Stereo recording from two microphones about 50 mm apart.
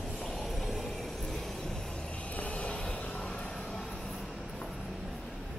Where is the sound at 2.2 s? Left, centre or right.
Left.